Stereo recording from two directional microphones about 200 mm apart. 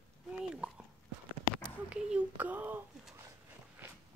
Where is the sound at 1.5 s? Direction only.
5° right (ahead or behind).